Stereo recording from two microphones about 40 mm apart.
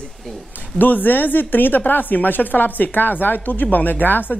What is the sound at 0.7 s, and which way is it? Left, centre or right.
A woman's voice, left.